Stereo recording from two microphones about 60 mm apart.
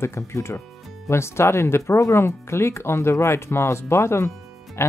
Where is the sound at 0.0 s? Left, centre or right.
Left.